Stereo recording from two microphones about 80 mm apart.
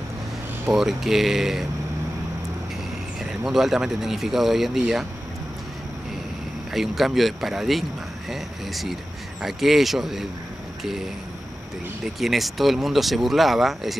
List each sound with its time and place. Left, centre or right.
0.7 s speech: centre
3.3 s speech: centre
6.7 s speech: centre
12.2 s speech: centre